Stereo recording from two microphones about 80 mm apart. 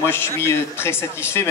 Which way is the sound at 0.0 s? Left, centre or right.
Left.